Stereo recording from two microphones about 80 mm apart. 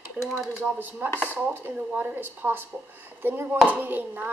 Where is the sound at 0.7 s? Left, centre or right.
Right.